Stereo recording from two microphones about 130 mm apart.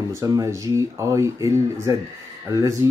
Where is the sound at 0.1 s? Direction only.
25° right (ahead or behind).